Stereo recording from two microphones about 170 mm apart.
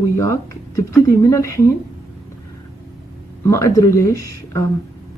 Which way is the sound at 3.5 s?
20° left (ahead or behind).